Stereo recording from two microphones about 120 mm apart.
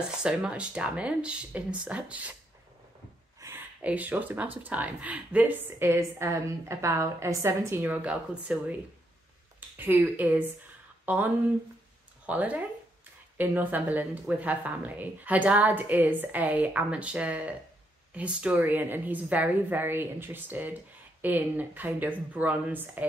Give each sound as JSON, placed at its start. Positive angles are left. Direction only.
{"t": 0.2, "sound": "speech", "side_deg": -5}
{"t": 3.3, "sound": "a sound", "side_deg": -25}
{"t": 3.8, "sound": "speech", "side_deg": -15}
{"t": 9.8, "sound": "speech", "side_deg": -15}